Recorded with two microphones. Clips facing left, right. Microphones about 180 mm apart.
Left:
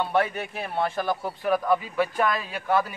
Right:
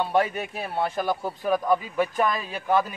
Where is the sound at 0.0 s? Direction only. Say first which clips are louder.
Right 1 dB; 15° right (ahead or behind).